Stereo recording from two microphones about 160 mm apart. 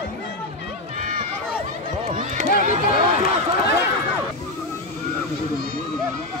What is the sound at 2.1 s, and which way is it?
Run, 40° right (ahead or behind).